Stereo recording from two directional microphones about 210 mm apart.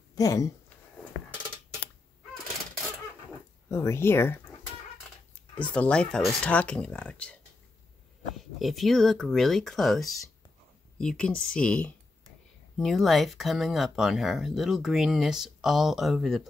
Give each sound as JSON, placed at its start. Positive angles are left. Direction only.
{"t": 0.1, "sound": "speech", "side_deg": 15}
{"t": 3.6, "sound": "speech", "side_deg": 15}
{"t": 8.4, "sound": "speech", "side_deg": 0}